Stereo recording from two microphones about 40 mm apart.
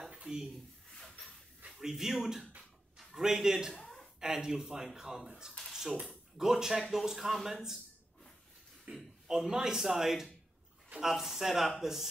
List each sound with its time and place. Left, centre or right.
0.1 s a sound: right
0.9 s drawer open or close: centre
1.7 s speech: centre
3.2 s speech: centre
3.8 s a sound: centre
4.2 s speech: centre
5.7 s dishes: centre
6.3 s speech: centre
8.9 s a man's voice: right
9.3 s speech: centre